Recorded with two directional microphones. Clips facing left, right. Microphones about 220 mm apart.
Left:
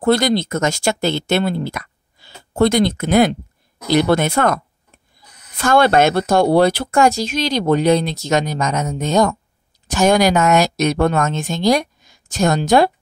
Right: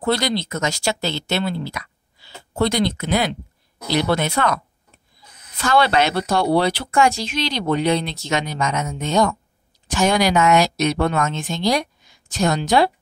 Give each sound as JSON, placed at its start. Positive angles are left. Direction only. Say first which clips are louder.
{"t": 0.0, "sound": "speech", "louder": "left 6 dB", "side_deg": 50}
{"t": 5.6, "sound": "speech", "louder": "left 4 dB", "side_deg": 50}